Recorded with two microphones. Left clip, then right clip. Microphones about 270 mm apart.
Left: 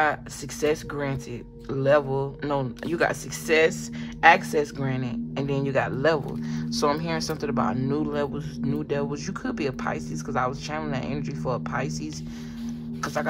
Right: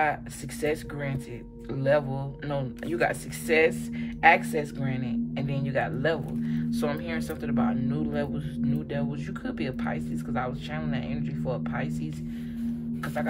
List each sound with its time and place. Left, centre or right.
0.0 s speech: centre
13.0 s speech: centre